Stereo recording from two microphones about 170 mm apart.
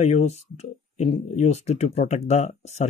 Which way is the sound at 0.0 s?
40° left (ahead or behind).